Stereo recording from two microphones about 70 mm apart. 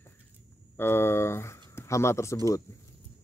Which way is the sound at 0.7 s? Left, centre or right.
Left.